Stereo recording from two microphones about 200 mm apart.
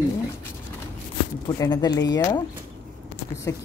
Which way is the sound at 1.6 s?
20° left (ahead or behind).